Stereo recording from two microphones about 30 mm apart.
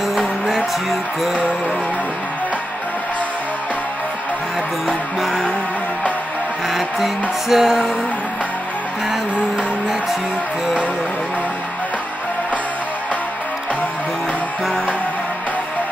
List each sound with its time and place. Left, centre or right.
0.5 s music: centre
4.8 s music: centre
6.7 s music: centre